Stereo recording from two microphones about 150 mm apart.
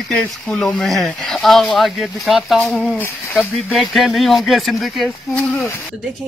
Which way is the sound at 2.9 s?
15° left (ahead or behind).